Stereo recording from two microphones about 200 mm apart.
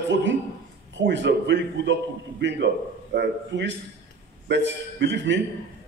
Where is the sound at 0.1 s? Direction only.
65° right (ahead or behind).